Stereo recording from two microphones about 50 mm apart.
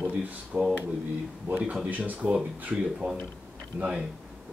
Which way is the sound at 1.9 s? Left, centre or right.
Right.